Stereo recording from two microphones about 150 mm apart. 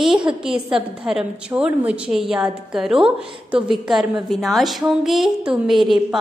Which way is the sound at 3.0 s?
35° right (ahead or behind).